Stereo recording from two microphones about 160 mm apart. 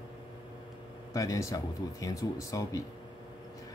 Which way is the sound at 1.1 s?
20° left (ahead or behind).